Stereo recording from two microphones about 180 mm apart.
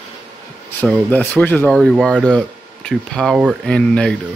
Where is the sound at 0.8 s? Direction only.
10° left (ahead or behind).